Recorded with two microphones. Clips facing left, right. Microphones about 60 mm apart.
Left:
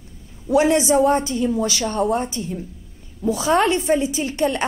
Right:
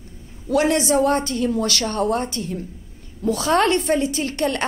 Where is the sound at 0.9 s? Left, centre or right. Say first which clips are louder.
Left 2 dB; centre.